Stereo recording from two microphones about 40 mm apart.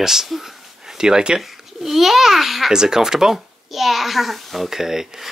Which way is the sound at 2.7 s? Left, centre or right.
Centre.